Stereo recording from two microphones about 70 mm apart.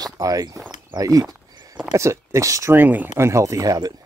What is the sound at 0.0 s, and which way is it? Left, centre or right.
Speech, right.